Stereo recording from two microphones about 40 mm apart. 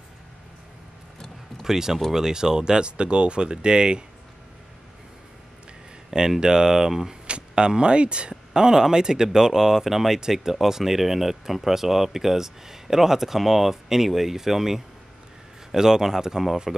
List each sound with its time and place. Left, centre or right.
1.6 s speech: centre
6.0 s a sound: centre
6.4 s speech: centre
7.2 s speech: right
16.7 s speech: centre